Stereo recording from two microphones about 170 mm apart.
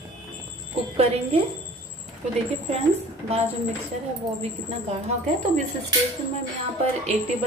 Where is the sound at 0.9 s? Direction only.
35° right (ahead or behind).